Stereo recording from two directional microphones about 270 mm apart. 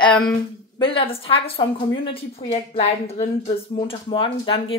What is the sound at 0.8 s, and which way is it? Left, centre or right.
A woman's voice, centre.